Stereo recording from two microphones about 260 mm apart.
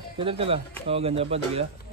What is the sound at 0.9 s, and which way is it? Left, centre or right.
Speech, right.